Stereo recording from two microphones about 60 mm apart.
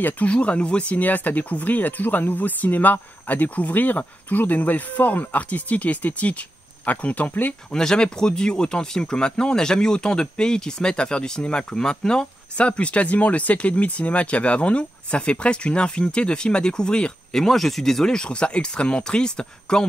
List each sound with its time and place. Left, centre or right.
0.0 s speech: left
7.7 s speech: centre